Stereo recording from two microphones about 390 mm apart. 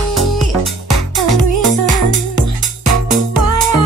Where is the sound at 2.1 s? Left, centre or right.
Right.